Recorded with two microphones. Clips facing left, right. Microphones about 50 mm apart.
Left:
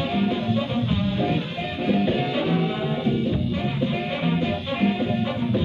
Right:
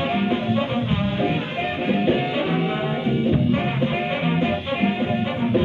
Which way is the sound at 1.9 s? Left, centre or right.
Right.